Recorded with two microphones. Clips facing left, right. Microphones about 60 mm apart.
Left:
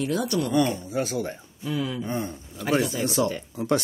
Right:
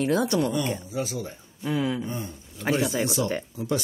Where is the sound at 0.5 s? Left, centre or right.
Left.